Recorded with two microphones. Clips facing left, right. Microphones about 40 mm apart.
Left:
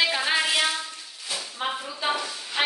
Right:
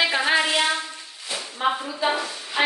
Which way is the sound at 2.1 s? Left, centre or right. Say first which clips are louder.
Even; centre.